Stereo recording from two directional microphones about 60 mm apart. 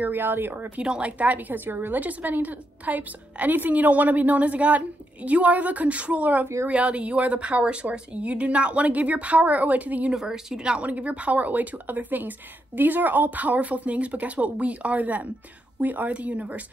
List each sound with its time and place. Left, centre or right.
0.0 s a woman's voice: right
10.1 s a woman's voice: centre